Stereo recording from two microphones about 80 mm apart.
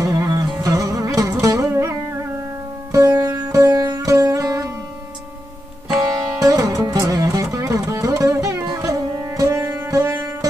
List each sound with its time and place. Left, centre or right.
0.0 s music: right
3.3 s music: right
3.7 s music: right
5.9 s music: right
9.6 s sitar: right
9.8 s sitar: right